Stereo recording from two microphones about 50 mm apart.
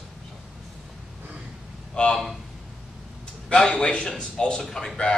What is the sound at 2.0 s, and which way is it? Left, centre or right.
Speech, centre.